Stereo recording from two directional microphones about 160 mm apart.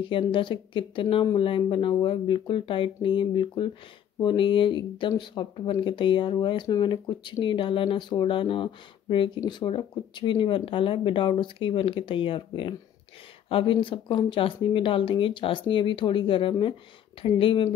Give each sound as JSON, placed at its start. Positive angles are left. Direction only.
{"t": 0.0, "sound": "speech", "side_deg": 30}